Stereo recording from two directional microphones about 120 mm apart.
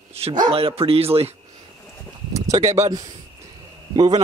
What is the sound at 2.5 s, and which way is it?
Speech, 70° right (ahead or behind).